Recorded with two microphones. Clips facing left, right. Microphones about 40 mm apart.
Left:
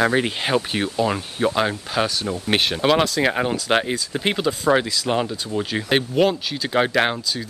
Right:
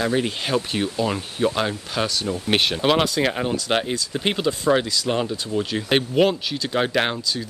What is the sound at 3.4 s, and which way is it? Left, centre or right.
Speech, centre.